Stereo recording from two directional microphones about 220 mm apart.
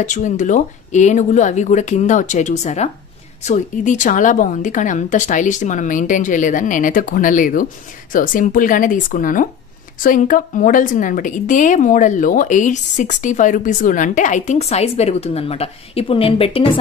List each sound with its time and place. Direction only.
0.0 s a woman's voice: 35° left (ahead or behind)